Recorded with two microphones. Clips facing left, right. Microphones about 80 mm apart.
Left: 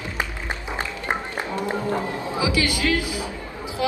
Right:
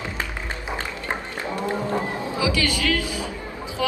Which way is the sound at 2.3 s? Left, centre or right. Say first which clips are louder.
Left 1 dB; left.